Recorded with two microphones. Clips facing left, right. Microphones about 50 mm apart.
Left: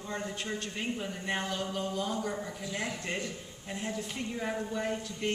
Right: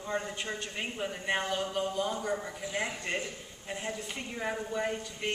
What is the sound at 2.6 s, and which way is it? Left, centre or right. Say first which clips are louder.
A man's voice: right 2 dB; centre.